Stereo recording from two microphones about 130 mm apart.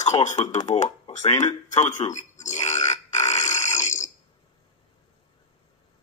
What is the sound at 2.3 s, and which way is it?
Burping, 65° left (ahead or behind).